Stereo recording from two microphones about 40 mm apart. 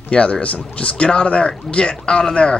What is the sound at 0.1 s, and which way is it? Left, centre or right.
Speech, left.